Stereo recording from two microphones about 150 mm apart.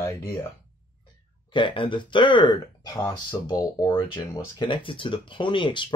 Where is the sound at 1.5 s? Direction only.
35° left (ahead or behind).